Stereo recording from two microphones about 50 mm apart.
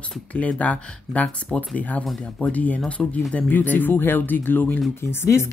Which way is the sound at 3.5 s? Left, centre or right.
Left.